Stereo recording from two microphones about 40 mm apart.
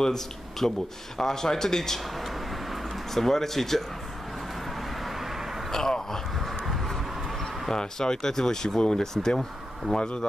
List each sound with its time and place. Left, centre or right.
0.0 s speech: centre
2.2 s a sound: centre
5.0 s vehicle: centre
5.7 s speech: centre
6.6 s a sound: centre
7.7 s speech: centre